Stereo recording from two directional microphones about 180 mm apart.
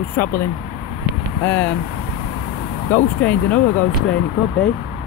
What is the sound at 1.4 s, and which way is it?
Speech, 10° left (ahead or behind).